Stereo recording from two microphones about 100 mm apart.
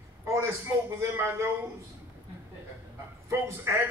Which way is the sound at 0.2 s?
30° right (ahead or behind).